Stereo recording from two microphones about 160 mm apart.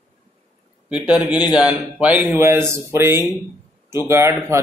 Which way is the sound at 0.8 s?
5° right (ahead or behind).